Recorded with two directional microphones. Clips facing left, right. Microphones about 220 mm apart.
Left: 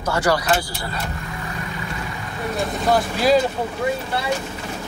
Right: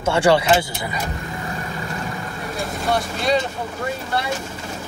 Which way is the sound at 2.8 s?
Centre (ahead or behind).